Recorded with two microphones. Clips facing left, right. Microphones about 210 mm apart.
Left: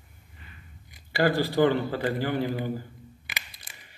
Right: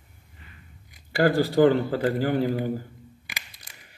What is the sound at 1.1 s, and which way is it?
A man's voice, 50° right (ahead or behind).